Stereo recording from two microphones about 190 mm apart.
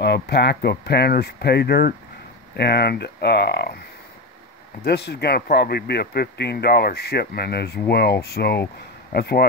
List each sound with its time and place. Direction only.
0.0 s speech: 60° left (ahead or behind)
4.8 s speech: 60° left (ahead or behind)